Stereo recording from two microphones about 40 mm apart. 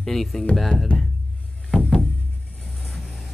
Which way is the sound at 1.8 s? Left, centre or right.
Left.